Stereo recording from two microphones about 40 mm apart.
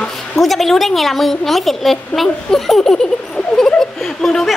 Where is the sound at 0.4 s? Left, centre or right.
Centre.